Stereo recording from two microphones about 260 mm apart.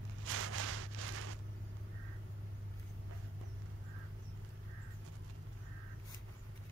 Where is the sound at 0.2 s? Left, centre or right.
Right.